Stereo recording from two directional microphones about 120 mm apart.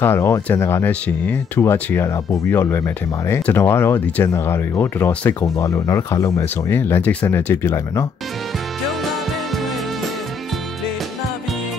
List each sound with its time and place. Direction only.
0.0 s speech: 20° left (ahead or behind)